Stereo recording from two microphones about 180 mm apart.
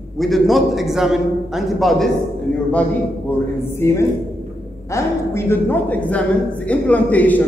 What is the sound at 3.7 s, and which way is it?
A woman's voice, 15° left (ahead or behind).